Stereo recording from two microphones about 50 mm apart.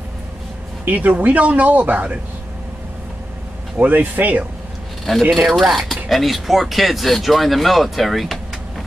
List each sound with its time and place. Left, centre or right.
0.8 s speech: right
3.7 s speech: right
5.3 s speech: centre